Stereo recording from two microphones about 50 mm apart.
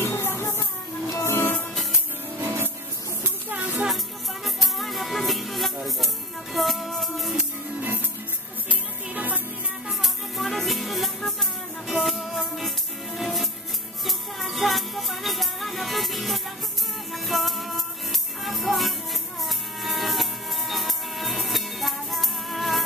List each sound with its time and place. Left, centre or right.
0.0 s music: left
3.4 s music: right
4.6 s music: centre
8.6 s music: right
9.8 s music: centre